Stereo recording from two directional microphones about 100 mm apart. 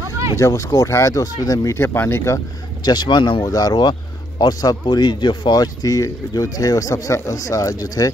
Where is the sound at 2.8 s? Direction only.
45° left (ahead or behind).